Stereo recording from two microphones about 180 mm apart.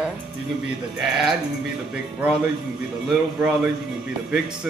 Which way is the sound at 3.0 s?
5° right (ahead or behind).